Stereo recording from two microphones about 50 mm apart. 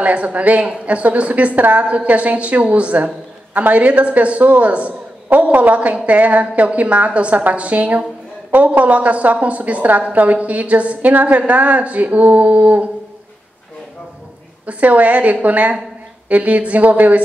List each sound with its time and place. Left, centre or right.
0.0 s a woman's voice: right
14.7 s a woman's voice: right